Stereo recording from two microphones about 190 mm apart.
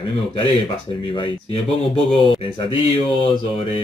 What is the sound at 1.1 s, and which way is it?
Speech, 25° left (ahead or behind).